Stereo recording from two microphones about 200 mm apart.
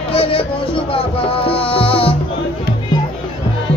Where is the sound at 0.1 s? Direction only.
25° left (ahead or behind).